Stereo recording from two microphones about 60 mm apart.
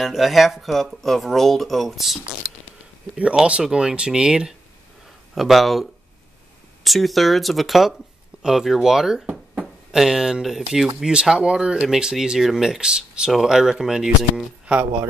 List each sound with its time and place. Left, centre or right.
0.0 s speech: centre
3.2 s speech: centre
5.3 s speech: centre